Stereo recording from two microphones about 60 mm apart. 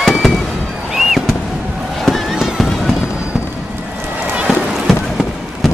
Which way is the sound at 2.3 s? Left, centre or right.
Centre.